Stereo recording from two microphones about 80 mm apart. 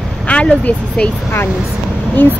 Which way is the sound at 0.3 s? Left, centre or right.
Centre.